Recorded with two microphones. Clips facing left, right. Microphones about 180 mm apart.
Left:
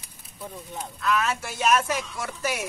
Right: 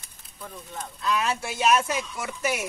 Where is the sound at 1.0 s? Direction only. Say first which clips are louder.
Left 1 dB; 30° right (ahead or behind).